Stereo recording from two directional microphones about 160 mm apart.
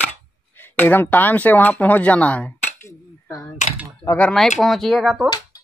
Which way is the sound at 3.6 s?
50° left (ahead or behind).